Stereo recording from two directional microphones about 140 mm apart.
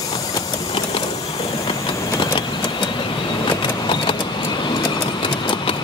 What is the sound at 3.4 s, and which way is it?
Vehicle, 35° left (ahead or behind).